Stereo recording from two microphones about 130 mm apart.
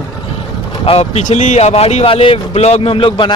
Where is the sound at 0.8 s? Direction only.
50° left (ahead or behind).